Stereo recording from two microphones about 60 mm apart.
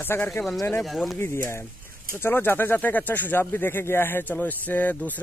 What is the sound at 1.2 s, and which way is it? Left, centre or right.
Speech, left.